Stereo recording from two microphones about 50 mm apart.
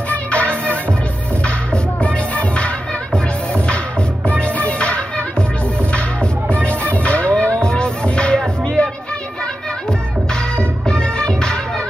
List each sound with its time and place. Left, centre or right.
0.1 s music: left
6.8 s music: left
10.9 s music: centre